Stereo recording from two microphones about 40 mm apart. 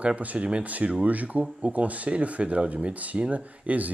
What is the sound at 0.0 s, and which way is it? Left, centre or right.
Speech, right.